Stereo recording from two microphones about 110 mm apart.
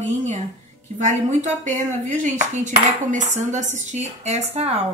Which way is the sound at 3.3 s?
90° right.